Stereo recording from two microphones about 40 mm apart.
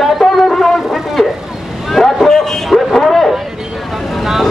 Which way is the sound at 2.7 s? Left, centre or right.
Centre.